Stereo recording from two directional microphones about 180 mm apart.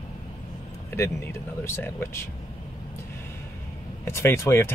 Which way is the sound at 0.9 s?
10° left (ahead or behind).